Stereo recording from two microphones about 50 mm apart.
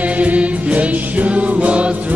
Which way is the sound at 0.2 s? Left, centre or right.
Right.